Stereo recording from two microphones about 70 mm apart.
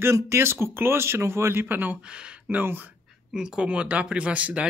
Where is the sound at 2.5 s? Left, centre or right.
Right.